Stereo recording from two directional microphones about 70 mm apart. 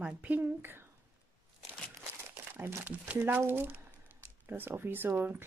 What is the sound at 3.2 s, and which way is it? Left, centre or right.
Speech, right.